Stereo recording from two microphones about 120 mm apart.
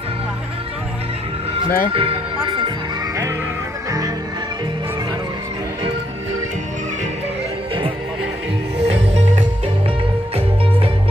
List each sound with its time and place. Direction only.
1.5 s speech: 50° right (ahead or behind)
8.8 s music: 65° right (ahead or behind)